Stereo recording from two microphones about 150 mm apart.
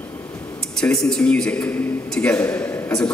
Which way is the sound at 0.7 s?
5° left (ahead or behind).